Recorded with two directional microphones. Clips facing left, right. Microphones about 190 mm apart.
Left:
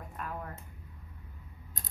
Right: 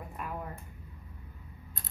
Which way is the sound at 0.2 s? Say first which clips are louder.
Right 1 dB; 10° right (ahead or behind).